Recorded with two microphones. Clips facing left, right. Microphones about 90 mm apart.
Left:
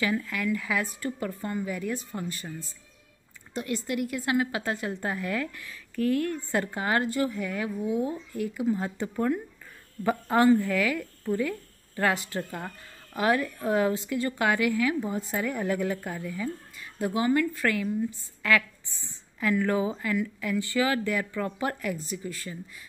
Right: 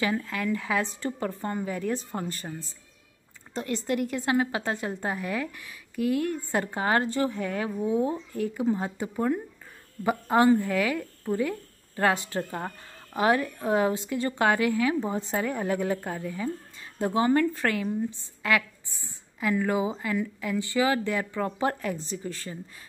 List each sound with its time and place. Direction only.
0.0 s speech: 30° right (ahead or behind)
8.9 s speech: 15° right (ahead or behind); by 22.6 s 35° right (ahead or behind)